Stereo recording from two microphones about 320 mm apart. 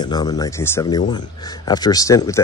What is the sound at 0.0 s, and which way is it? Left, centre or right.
Speech, centre.